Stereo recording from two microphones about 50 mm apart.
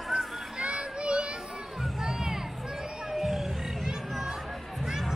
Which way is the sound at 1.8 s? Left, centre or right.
Centre.